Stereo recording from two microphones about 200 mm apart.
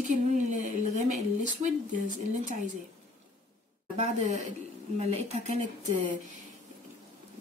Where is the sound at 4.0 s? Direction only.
35° right (ahead or behind).